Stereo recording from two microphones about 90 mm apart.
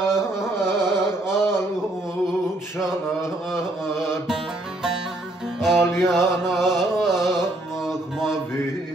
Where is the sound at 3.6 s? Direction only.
5° right (ahead or behind).